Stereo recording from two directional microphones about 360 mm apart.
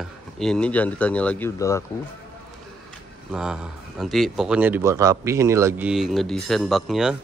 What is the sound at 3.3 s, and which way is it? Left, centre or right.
A man's voice, centre.